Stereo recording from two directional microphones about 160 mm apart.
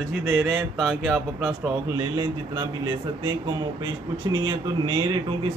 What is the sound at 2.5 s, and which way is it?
Speech, 30° right (ahead or behind).